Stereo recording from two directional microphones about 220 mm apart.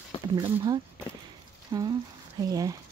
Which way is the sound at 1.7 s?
20° right (ahead or behind).